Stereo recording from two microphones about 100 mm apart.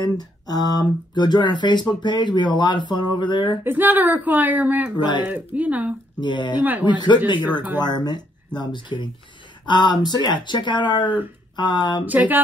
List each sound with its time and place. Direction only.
0.0 s speech: 40° left (ahead or behind)
3.6 s speech: 20° right (ahead or behind)
6.1 s speech: 50° left (ahead or behind)
12.1 s speech: 15° right (ahead or behind)